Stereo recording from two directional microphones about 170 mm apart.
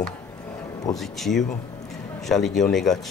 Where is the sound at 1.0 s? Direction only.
Centre (ahead or behind).